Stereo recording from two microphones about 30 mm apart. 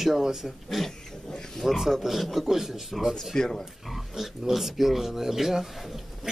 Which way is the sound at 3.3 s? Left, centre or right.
Left.